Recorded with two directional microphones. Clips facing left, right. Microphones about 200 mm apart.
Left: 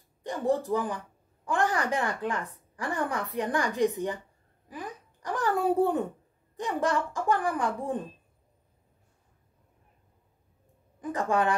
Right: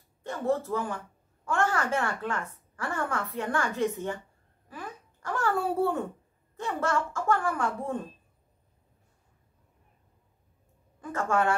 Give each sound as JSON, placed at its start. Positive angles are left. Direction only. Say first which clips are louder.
{"t": 0.2, "sound": "a woman's voice", "louder": "left 1 dB", "side_deg": 15}
{"t": 4.6, "sound": "a sound", "louder": "left 2 dB", "side_deg": 15}
{"t": 6.5, "sound": "a woman's voice", "louder": "left 1 dB", "side_deg": 15}
{"t": 11.0, "sound": "a woman's voice", "louder": "left 1 dB", "side_deg": 15}